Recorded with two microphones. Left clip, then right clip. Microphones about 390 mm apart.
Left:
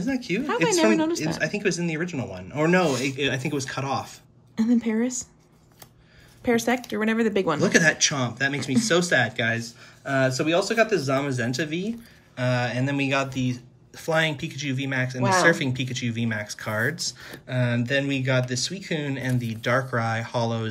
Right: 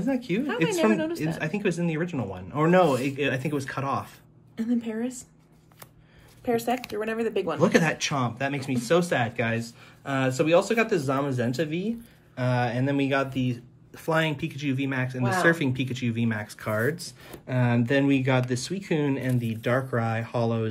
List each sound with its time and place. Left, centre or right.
0.0 s speech: centre
0.9 s a woman's voice: centre
1.2 s speech: centre
4.7 s a woman's voice: centre
7.2 s a woman's voice: centre
7.6 s speech: centre